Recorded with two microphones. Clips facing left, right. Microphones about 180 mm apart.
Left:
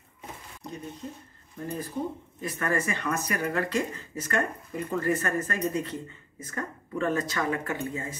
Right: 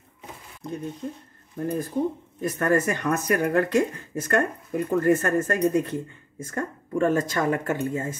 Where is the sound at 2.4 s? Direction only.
45° right (ahead or behind).